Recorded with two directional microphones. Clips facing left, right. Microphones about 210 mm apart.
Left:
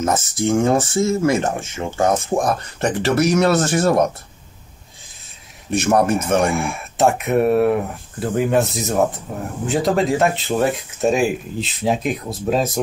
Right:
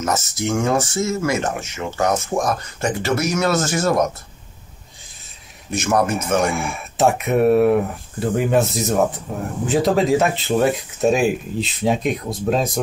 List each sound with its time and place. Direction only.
0.5 s speech: 30° left (ahead or behind)
5.8 s speech: 30° left (ahead or behind)
6.4 s speech: centre (ahead or behind)